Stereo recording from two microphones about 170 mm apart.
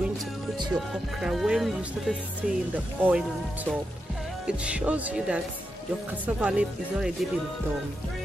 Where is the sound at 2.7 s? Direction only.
10° right (ahead or behind).